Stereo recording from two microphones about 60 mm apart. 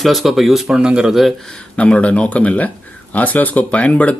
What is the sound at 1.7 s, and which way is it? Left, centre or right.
Speech, left.